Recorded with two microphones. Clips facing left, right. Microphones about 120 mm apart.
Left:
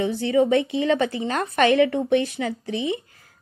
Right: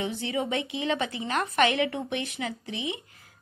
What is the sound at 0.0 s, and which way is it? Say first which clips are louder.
A woman's voice: left 10 dB; 35° left (ahead or behind).